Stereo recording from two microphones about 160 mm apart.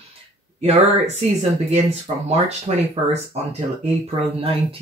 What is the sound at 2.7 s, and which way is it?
Speech, 40° right (ahead or behind).